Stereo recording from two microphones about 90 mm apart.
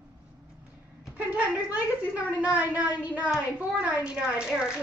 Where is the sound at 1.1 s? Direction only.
15° right (ahead or behind).